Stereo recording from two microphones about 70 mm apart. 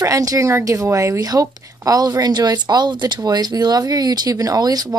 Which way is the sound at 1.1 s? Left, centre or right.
Right.